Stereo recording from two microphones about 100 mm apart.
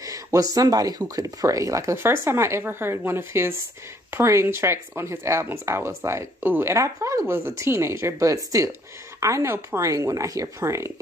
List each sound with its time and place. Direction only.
0.0 s speech: 35° right (ahead or behind)